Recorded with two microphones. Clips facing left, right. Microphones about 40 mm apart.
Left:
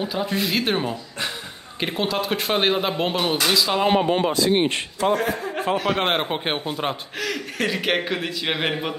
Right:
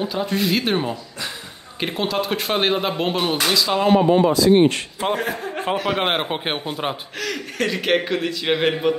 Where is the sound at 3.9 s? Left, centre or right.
Left.